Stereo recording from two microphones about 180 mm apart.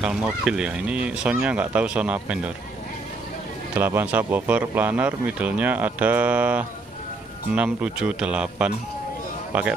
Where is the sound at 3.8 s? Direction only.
10° right (ahead or behind).